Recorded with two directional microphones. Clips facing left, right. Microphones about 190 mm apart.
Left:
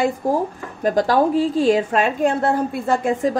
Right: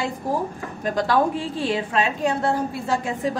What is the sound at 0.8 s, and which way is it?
A woman's voice, 40° left (ahead or behind).